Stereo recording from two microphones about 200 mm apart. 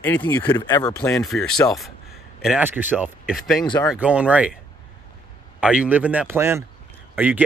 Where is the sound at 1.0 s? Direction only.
5° left (ahead or behind).